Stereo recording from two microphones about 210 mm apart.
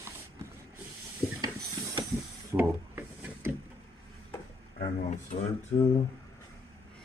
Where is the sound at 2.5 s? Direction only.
10° right (ahead or behind).